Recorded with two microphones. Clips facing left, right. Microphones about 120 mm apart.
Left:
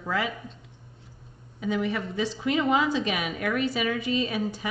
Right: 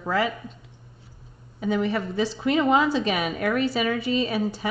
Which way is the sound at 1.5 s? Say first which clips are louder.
Right 3 dB; 40° right (ahead or behind).